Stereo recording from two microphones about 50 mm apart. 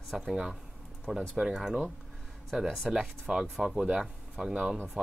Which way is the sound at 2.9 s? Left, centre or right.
Centre.